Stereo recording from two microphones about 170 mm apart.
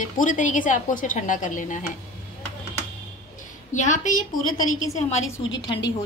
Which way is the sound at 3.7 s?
45° left (ahead or behind).